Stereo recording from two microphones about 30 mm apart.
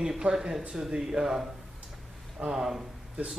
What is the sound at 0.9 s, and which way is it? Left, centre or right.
Speech, centre.